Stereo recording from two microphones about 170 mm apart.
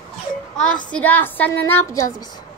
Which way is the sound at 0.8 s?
10° left (ahead or behind).